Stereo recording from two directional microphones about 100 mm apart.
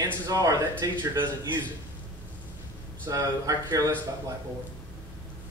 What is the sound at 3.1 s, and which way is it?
Speech, 35° right (ahead or behind).